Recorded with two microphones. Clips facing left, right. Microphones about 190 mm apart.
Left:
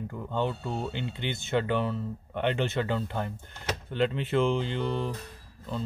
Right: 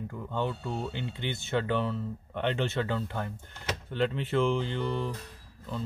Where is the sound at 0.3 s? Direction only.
25° left (ahead or behind).